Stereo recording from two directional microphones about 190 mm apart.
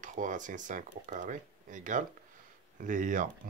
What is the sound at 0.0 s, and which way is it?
Speech, 40° right (ahead or behind).